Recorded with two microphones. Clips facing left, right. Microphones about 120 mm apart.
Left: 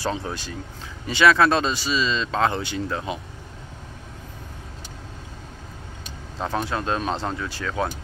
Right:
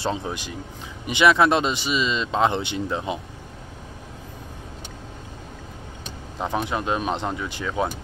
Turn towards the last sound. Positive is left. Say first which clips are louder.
# right 1 dB
turn(degrees=-15)  # may be behind; listen again after turning